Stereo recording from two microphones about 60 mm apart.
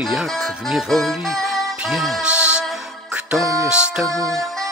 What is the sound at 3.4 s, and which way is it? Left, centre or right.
Speech, right.